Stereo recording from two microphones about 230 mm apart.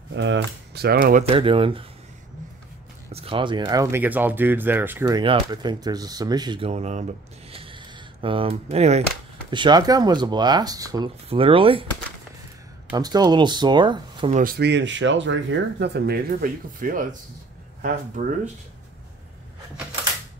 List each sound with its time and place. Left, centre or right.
0.1 s speech: right
1.2 s speech: right
3.1 s speech: right
7.5 s a sound: right
9.5 s speech: centre
12.9 s speech: centre
14.3 s speech: right